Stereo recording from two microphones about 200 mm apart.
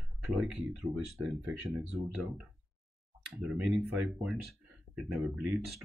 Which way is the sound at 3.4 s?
5° right (ahead or behind).